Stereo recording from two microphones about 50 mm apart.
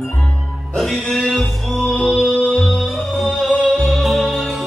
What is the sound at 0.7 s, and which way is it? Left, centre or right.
Music, centre.